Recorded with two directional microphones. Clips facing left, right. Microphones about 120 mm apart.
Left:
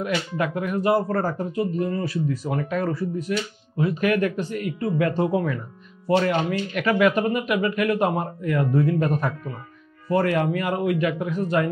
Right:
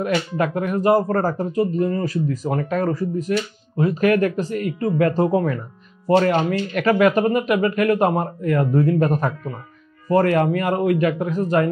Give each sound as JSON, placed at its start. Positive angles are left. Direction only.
{"t": 0.0, "sound": "speech", "side_deg": -45}